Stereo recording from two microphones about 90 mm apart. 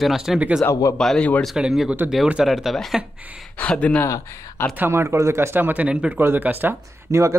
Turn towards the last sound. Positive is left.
turn(degrees=-35)  # may be behind; listen again after turning